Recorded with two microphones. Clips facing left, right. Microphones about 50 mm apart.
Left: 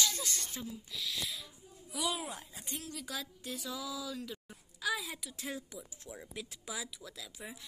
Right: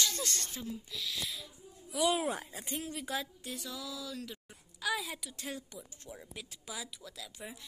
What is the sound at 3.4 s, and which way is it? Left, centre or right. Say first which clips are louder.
Speech: left 1 dB; centre.